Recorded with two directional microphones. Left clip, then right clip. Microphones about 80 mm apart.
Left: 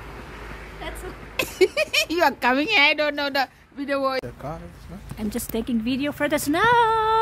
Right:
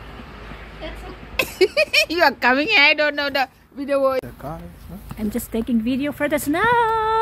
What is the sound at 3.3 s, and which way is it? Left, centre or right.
Speech, right.